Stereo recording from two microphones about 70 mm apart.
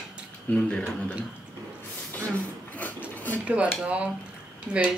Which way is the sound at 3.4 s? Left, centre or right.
Centre.